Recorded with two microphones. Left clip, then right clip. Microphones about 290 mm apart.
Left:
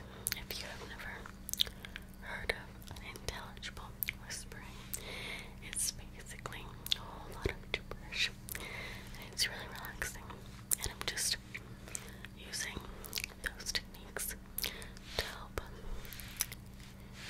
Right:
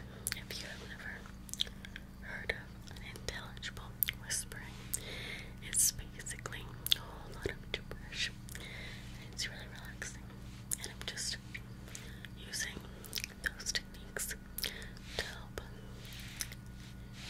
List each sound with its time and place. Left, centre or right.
0.3 s chewing: centre
3.1 s whispering: centre
8.5 s a sound: left
9.4 s whispering: left
12.4 s whispering: centre
16.4 s a sound: centre